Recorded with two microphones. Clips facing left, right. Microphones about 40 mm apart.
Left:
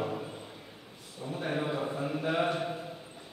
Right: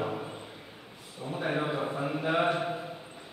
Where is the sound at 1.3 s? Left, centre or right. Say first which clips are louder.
Right 2 dB; centre.